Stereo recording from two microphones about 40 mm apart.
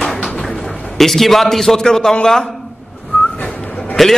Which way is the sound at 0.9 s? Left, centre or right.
Centre.